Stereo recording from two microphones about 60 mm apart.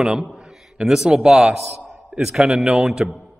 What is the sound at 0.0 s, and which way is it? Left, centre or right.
A man's voice, centre.